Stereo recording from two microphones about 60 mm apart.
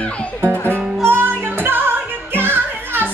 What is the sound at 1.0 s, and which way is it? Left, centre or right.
Music, right.